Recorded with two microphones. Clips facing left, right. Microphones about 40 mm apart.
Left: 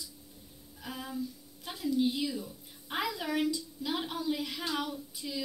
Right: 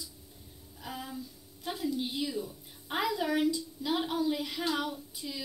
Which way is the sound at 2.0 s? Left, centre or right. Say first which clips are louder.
Left 3 dB; centre.